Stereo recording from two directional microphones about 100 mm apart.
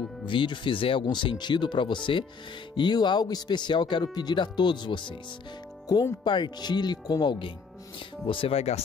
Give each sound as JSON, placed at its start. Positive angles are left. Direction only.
{"t": 0.2, "sound": "speech", "side_deg": 55}
{"t": 6.2, "sound": "speech", "side_deg": 50}
{"t": 8.3, "sound": "speech", "side_deg": 70}